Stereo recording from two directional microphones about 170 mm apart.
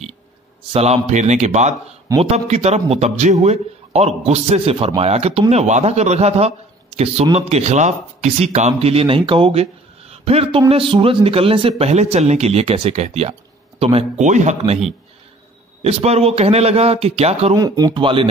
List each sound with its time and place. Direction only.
0.7 s a man's voice: 40° right (ahead or behind)
15.8 s a man's voice: 40° right (ahead or behind)
17.6 s speech: 20° right (ahead or behind)